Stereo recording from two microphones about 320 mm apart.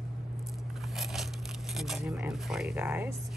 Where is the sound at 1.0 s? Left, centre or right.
Centre.